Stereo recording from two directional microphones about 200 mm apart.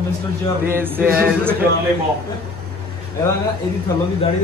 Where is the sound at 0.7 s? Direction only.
10° right (ahead or behind).